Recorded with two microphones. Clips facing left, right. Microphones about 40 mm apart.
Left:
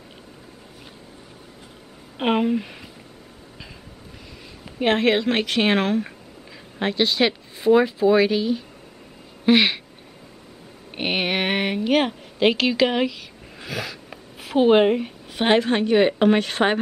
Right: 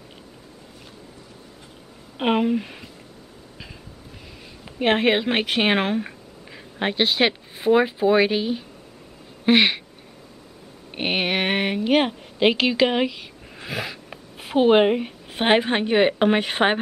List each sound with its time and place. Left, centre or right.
2.1 s a woman's voice: centre
4.6 s speech: centre
9.5 s speech: centre
10.9 s a woman's voice: centre